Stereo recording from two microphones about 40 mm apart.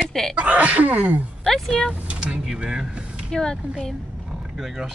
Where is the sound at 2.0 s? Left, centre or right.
Right.